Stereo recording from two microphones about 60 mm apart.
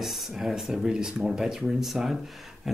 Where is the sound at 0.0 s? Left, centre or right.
Centre.